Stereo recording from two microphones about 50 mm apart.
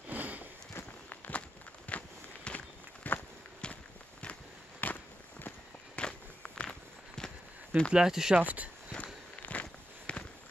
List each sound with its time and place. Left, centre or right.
0.1 s a sound: right
1.3 s walk: left
3.6 s walk: centre
4.2 s walk: left
5.9 s walk: centre
7.9 s speech: centre
8.4 s speech: right
8.9 s walk: left